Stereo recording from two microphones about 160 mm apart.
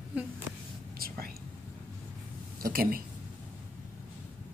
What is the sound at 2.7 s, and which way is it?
Speech, 65° right (ahead or behind).